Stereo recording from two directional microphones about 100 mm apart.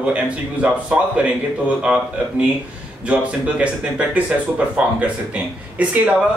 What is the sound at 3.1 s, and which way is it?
Speech, 15° right (ahead or behind).